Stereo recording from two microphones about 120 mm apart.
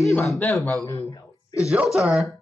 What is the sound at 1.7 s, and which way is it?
Speech, 5° right (ahead or behind).